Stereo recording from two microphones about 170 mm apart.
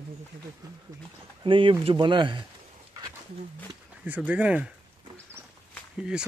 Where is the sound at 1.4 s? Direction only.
30° right (ahead or behind).